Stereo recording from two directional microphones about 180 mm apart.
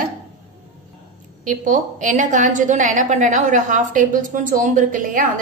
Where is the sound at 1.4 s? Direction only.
45° right (ahead or behind).